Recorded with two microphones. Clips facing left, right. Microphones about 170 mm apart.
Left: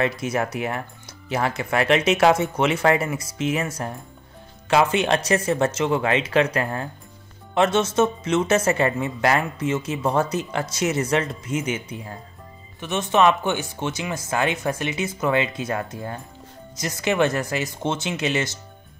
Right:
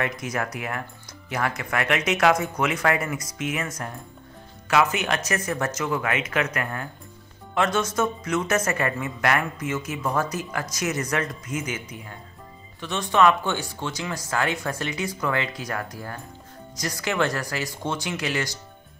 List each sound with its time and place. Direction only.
0.0 s a woman's voice: 30° left (ahead or behind)